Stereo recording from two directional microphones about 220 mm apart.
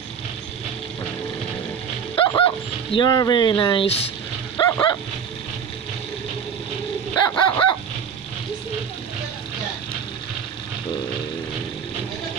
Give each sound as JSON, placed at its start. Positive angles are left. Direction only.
{"t": 2.1, "sound": "dog", "side_deg": 25}
{"t": 3.0, "sound": "speech", "side_deg": 20}
{"t": 4.6, "sound": "dog", "side_deg": 15}
{"t": 7.2, "sound": "speech", "side_deg": 20}